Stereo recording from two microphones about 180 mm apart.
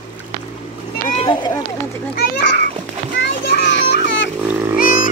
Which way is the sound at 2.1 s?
70° left (ahead or behind).